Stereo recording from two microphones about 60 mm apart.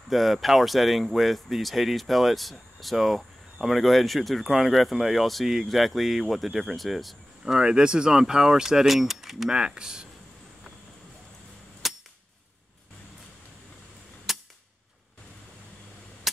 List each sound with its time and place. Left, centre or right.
0.1 s speech: centre
7.4 s keys jangling: centre
11.8 s cap gun: centre
14.3 s cap gun: centre